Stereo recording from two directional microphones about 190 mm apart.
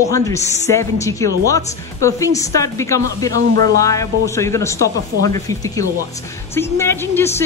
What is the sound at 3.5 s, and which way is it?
Music, 50° right (ahead or behind).